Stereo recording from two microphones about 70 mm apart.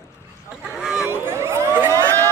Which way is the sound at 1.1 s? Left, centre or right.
Right.